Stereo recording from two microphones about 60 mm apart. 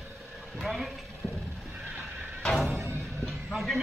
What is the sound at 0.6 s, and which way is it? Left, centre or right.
Speech, centre.